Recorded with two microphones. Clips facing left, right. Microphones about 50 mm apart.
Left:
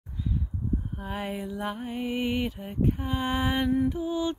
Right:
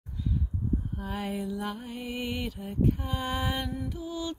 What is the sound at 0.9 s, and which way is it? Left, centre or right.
Mantra, centre.